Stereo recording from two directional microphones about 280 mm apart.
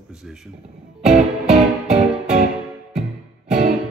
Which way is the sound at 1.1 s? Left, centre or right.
Right.